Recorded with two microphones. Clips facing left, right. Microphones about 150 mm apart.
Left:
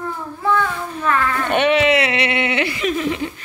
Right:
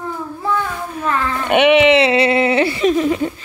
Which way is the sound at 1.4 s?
15° right (ahead or behind).